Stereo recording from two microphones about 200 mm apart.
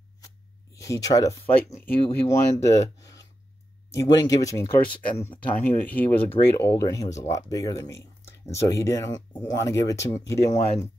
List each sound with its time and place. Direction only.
0.7 s speech: 15° left (ahead or behind)
1.4 s speech: 30° left (ahead or behind)
2.2 s speech: 15° left (ahead or behind)